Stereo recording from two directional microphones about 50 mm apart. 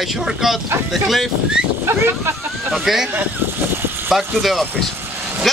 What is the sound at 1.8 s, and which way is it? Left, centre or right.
Speech, right.